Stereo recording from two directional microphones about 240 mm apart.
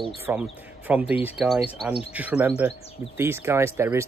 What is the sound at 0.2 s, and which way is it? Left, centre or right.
A man's voice, centre.